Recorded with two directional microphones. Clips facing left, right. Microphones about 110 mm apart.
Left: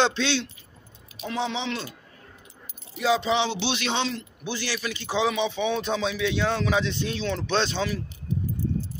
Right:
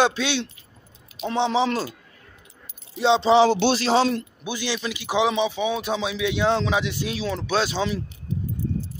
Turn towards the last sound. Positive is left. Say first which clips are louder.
# right 2 dB
turn(degrees=-10)  # may be behind; listen again after turning